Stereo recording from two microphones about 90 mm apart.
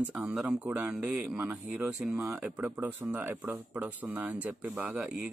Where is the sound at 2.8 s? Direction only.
15° right (ahead or behind).